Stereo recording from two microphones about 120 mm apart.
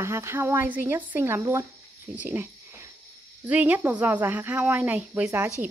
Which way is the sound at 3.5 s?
10° right (ahead or behind).